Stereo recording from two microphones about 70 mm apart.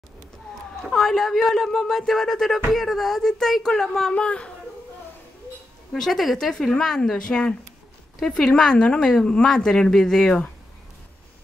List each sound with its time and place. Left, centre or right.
0.8 s speech: centre
4.1 s a woman's voice: centre
5.9 s a woman's voice: centre